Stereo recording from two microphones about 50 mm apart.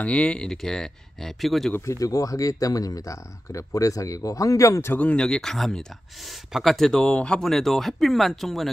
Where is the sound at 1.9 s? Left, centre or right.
Left.